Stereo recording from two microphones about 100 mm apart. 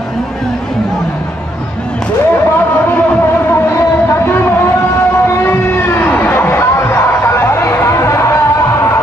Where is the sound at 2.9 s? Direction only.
20° left (ahead or behind).